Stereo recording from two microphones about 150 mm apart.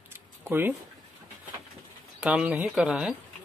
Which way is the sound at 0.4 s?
15° right (ahead or behind).